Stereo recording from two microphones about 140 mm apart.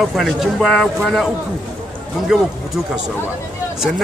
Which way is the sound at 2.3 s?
5° right (ahead or behind).